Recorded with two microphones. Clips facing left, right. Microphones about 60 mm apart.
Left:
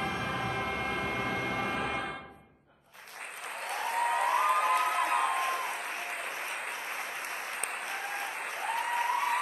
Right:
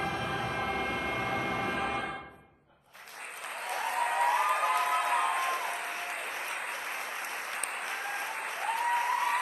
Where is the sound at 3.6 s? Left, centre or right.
Centre.